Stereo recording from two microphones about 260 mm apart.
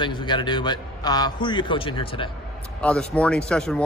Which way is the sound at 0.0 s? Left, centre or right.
Centre.